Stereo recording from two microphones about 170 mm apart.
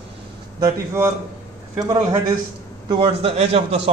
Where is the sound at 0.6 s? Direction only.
15° right (ahead or behind).